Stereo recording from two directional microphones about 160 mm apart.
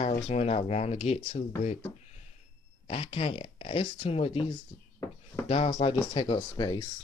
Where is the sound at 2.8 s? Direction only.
35° left (ahead or behind).